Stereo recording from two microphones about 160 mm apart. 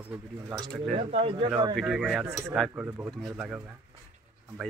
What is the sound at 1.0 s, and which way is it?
Speech, 40° right (ahead or behind).